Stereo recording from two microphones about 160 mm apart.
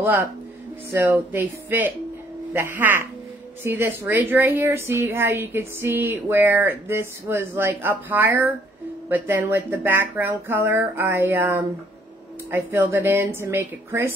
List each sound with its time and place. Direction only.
0.0 s speech: 15° right (ahead or behind)